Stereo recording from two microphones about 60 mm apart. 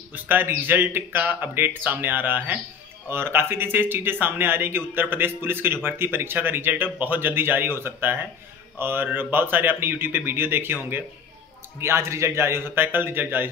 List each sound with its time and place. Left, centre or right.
0.1 s speech: right
11.8 s a man's voice: right